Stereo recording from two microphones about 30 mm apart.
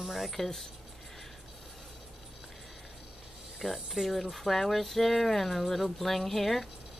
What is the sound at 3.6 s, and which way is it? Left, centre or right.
Speech, centre.